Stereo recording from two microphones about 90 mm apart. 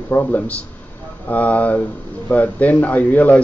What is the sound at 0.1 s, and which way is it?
A man's voice, 20° left (ahead or behind).